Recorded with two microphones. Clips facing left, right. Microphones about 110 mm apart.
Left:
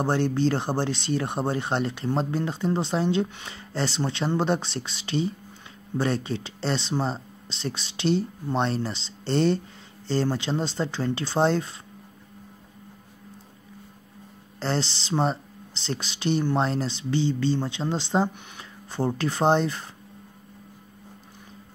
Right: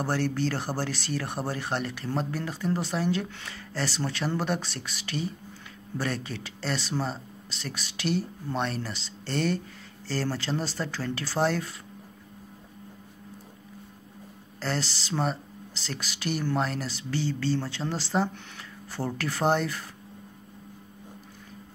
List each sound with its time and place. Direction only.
0.0 s speech: 20° left (ahead or behind)
14.6 s speech: 25° left (ahead or behind)